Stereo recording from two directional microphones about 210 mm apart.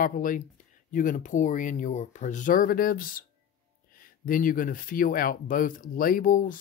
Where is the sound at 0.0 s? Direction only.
40° left (ahead or behind).